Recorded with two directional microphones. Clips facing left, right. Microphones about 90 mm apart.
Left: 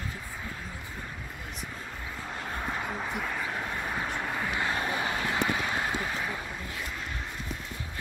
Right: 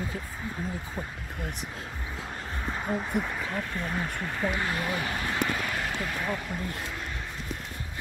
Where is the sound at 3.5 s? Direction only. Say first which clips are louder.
Right 1 dB; 15° left (ahead or behind).